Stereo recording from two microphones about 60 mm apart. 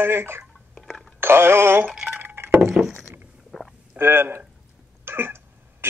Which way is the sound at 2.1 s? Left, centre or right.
Right.